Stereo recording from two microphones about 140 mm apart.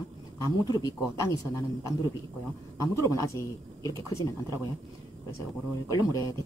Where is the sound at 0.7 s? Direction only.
25° left (ahead or behind).